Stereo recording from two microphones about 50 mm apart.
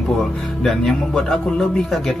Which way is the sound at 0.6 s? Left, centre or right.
Centre.